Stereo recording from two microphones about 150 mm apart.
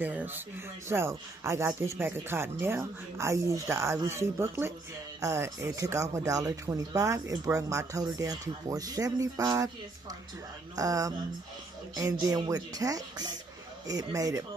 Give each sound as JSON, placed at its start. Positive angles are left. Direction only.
{"t": 0.0, "sound": "speech", "side_deg": -10}